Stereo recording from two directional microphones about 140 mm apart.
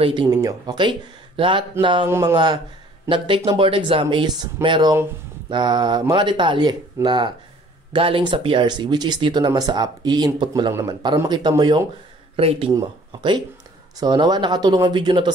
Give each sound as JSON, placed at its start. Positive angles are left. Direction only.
{"t": 0.0, "sound": "speech", "side_deg": -30}
{"t": 2.0, "sound": "speech", "side_deg": -25}
{"t": 12.4, "sound": "speech", "side_deg": -45}
{"t": 12.7, "sound": "speech", "side_deg": -35}